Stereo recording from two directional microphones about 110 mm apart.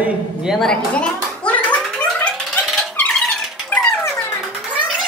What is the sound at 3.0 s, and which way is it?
Squeak, 10° left (ahead or behind).